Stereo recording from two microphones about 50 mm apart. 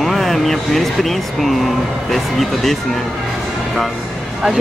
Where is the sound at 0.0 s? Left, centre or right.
Centre.